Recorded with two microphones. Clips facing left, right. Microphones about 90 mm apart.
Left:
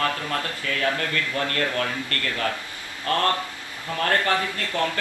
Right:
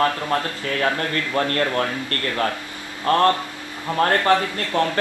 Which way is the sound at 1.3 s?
40° right (ahead or behind).